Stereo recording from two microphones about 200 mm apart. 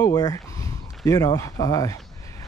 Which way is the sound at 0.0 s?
20° left (ahead or behind).